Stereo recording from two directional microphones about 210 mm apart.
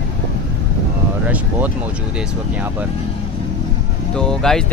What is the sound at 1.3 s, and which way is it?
Speech, 10° right (ahead or behind).